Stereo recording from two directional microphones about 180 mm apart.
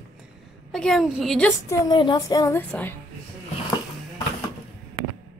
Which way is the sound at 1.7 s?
25° left (ahead or behind).